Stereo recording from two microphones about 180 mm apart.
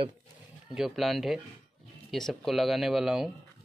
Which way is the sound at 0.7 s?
Centre (ahead or behind).